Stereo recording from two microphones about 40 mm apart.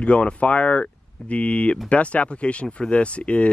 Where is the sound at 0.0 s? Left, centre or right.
Left.